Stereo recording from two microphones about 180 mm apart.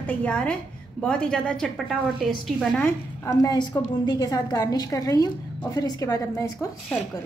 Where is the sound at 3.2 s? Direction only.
15° left (ahead or behind).